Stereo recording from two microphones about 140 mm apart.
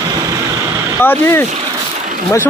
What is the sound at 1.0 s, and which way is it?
Speech, 15° left (ahead or behind).